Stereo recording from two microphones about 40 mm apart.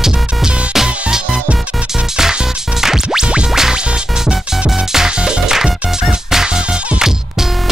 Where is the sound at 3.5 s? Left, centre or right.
Centre.